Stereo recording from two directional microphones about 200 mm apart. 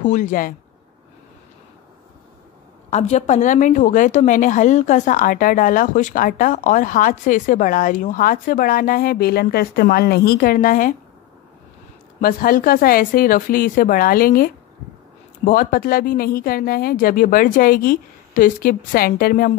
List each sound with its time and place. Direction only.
0.0 s a woman's voice: 40° left (ahead or behind)
2.9 s a woman's voice: 35° left (ahead or behind)
12.2 s a woman's voice: 45° left (ahead or behind)